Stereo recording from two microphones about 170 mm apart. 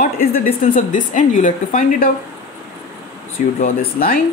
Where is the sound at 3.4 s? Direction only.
50° left (ahead or behind).